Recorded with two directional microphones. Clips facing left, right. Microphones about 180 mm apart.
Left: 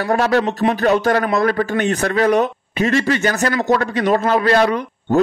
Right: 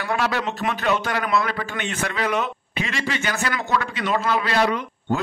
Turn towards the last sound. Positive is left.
turn(degrees=45)  # may be behind; listen again after turning